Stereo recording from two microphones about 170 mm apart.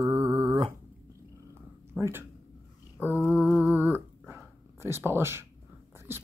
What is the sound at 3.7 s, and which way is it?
Dog, 10° right (ahead or behind).